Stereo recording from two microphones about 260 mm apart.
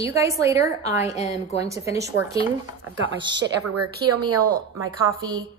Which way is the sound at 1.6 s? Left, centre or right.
Centre.